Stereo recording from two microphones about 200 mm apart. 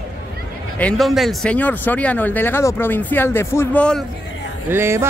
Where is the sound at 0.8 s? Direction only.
5° left (ahead or behind).